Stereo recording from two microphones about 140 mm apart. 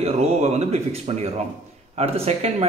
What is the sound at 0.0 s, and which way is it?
Speech, 50° right (ahead or behind).